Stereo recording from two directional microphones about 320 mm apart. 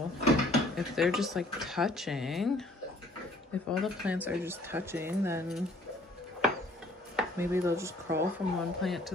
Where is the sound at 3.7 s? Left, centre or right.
Centre.